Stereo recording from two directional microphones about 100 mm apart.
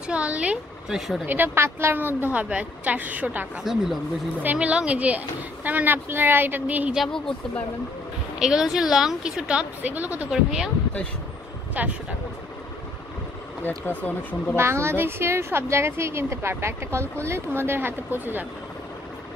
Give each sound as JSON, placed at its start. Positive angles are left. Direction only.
{"t": 0.0, "sound": "a woman's voice", "side_deg": -10}
{"t": 1.2, "sound": "a woman's voice", "side_deg": -20}
{"t": 3.7, "sound": "speech", "side_deg": -5}
{"t": 4.4, "sound": "a woman's voice", "side_deg": -15}
{"t": 8.4, "sound": "a woman's voice", "side_deg": -5}
{"t": 11.8, "sound": "a woman's voice", "side_deg": -15}
{"t": 13.7, "sound": "speech", "side_deg": 20}
{"t": 14.6, "sound": "a woman's voice", "side_deg": -25}